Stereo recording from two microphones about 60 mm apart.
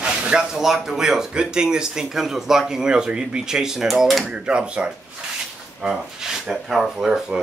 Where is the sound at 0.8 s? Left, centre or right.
Centre.